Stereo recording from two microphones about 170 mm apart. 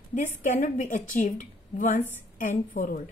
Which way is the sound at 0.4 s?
50° left (ahead or behind).